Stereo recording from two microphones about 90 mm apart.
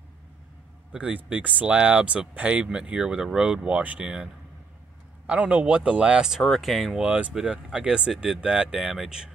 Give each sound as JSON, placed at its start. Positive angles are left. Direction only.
{"t": 0.9, "sound": "speech", "side_deg": -15}
{"t": 6.4, "sound": "speech", "side_deg": 0}